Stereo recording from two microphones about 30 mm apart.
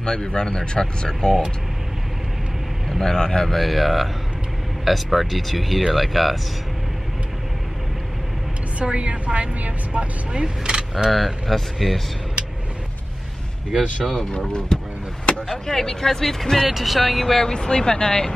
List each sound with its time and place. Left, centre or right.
0.0 s speech: left
3.0 s speech: centre
3.4 s speech: centre
8.7 s a woman's voice: right
10.3 s speech: right
11.1 s speech: centre
14.7 s vehicle: left
15.6 s speech: centre
16.6 s speech: centre
17.4 s speech: left